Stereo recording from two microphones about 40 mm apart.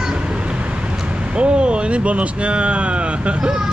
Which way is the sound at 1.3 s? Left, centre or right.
Right.